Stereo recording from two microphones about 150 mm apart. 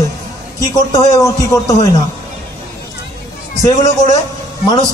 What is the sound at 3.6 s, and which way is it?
Speech, 25° left (ahead or behind).